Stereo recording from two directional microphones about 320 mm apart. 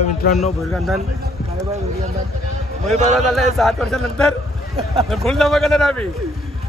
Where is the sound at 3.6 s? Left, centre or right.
Centre.